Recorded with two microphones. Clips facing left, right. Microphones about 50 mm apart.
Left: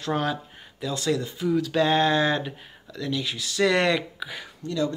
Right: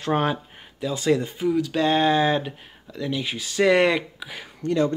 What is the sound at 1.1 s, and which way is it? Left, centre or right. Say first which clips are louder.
Speech: right 5 dB; right.